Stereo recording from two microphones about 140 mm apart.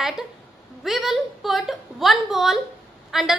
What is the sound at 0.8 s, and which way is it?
A woman's voice, centre (ahead or behind).